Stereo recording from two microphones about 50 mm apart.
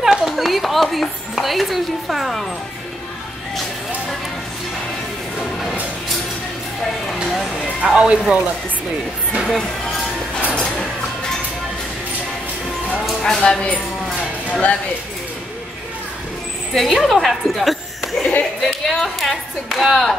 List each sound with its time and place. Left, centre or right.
0.0 s a sound: centre
0.9 s speech: centre
7.8 s speech: centre
9.4 s speech: centre
10.5 s music: centre
13.2 s speech: centre
16.7 s a woman's voice: centre